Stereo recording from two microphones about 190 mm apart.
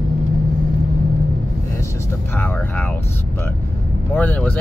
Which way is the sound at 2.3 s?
10° left (ahead or behind).